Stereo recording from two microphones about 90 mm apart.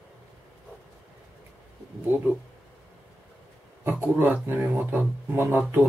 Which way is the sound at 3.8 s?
20° right (ahead or behind).